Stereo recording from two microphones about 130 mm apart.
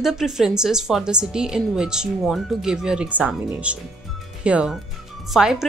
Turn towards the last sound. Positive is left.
turn(degrees=-5)  # may be behind; listen again after turning